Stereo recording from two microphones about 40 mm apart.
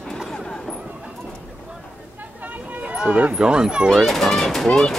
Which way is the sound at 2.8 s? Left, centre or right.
Right.